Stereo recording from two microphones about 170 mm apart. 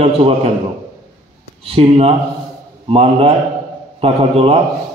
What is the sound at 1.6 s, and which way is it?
A man's voice, 35° right (ahead or behind).